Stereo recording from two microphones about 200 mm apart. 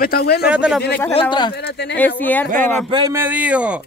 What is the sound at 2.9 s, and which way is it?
Speech, 15° right (ahead or behind).